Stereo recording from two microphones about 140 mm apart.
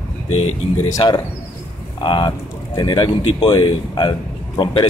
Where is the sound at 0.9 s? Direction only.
30° left (ahead or behind).